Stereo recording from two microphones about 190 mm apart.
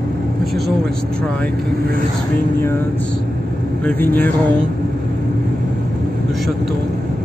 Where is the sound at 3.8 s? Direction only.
10° left (ahead or behind).